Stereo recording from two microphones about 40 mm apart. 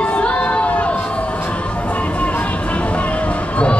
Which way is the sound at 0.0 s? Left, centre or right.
Left.